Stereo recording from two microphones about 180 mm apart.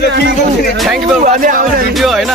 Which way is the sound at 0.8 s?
Centre (ahead or behind).